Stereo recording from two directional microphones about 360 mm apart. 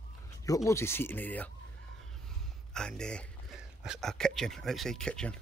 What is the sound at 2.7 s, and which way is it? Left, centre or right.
A man's voice, centre.